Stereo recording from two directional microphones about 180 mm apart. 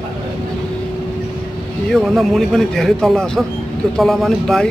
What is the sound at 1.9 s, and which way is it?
Speech, centre (ahead or behind).